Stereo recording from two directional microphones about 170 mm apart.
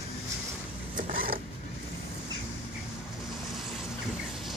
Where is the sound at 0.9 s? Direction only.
55° right (ahead or behind).